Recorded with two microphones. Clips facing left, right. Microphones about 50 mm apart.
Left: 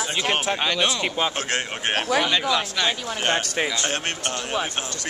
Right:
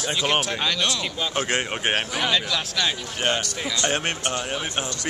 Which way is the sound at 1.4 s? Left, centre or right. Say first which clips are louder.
Right 2 dB; centre.